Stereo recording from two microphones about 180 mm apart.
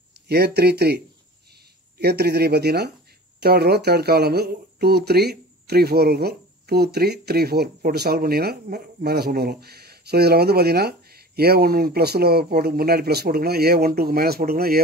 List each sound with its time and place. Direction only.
0.3 s speech: 65° right (ahead or behind)